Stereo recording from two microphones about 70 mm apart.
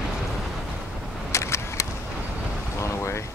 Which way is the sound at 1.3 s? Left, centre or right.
Left.